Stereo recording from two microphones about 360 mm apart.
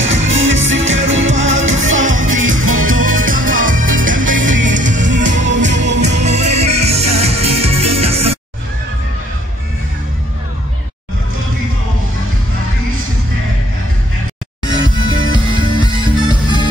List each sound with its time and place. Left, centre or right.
0.1 s music: right
3.3 s music: right
5.9 s music: centre
15.2 s music: centre